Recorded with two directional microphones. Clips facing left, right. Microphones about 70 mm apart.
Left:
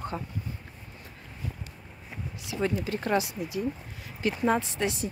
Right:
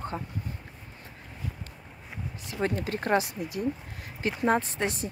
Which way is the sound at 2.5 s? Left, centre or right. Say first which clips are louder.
Left 1 dB; right.